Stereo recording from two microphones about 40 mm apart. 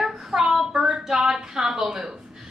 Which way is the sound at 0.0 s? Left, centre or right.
Centre.